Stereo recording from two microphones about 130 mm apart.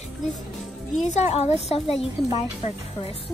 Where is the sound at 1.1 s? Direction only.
60° left (ahead or behind).